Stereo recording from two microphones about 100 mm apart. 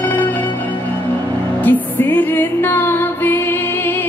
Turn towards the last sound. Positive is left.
turn(degrees=20)  # may be behind; listen again after turning